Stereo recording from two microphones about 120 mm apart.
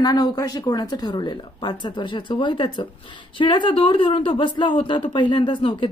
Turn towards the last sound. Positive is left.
turn(degrees=45)  # may be behind; listen again after turning